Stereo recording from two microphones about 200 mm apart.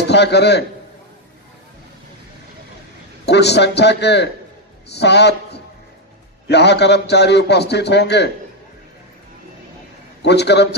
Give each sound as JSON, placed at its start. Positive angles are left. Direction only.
{"t": 0.1, "sound": "a man's voice", "side_deg": 55}
{"t": 3.3, "sound": "a man's voice", "side_deg": 55}
{"t": 10.2, "sound": "a man's voice", "side_deg": 60}